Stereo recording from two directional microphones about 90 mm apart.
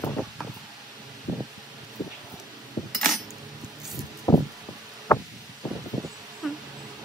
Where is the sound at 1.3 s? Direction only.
10° right (ahead or behind).